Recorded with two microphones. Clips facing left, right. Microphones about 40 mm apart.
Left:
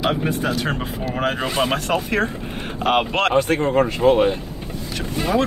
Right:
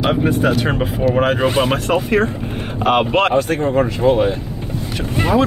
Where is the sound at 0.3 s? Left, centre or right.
Right.